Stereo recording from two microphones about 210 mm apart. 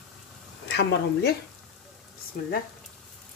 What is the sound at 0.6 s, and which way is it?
Speech, 55° left (ahead or behind).